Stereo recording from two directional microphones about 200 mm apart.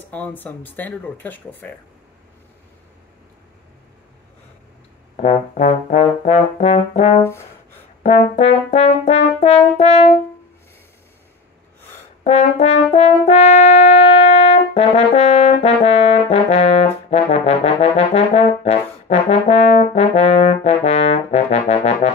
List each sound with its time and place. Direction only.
0.1 s speech: 10° left (ahead or behind)
5.1 s brass instrument: 35° left (ahead or behind)
12.2 s french horn: 35° left (ahead or behind)